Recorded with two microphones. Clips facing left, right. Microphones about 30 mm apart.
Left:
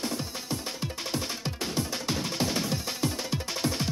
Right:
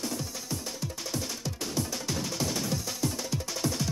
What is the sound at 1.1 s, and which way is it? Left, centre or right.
Music, left.